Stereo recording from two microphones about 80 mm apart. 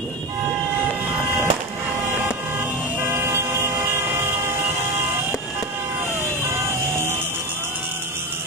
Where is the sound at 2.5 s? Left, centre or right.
Right.